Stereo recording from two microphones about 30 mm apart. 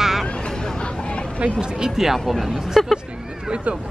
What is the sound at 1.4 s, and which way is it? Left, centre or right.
Speech, right.